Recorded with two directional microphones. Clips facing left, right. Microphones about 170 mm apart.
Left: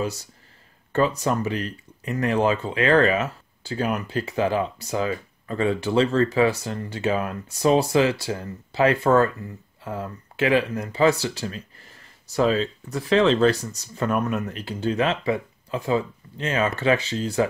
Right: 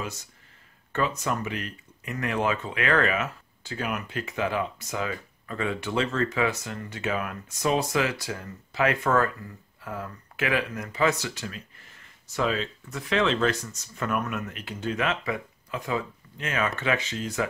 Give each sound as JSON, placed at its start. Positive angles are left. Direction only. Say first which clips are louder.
{"t": 0.0, "sound": "speech", "louder": "left 8 dB", "side_deg": 35}